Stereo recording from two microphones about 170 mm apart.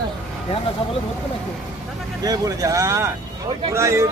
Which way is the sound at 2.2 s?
20° right (ahead or behind).